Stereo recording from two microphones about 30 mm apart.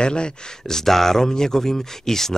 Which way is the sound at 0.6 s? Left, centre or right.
Centre.